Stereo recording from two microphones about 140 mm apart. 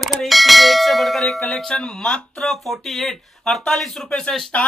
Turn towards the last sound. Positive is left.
turn(degrees=5)  # may be behind; listen again after turning